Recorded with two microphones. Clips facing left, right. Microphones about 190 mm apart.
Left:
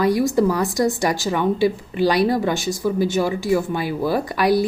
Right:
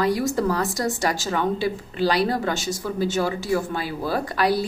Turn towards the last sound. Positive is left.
turn(degrees=15)  # may be behind; listen again after turning